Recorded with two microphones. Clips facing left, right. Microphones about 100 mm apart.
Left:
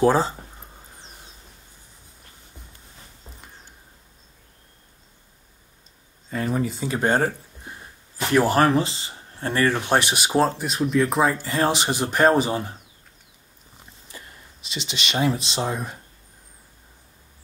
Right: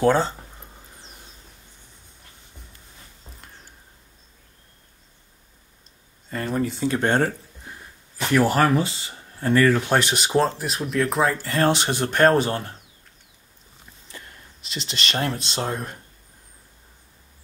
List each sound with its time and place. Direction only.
0.0 s speech: 5° left (ahead or behind)
6.3 s speech: 5° left (ahead or behind)
7.6 s a sound: 15° left (ahead or behind)
8.3 s speech: 25° left (ahead or behind)
10.1 s speech: 5° left (ahead or behind)
14.0 s speech: 5° left (ahead or behind)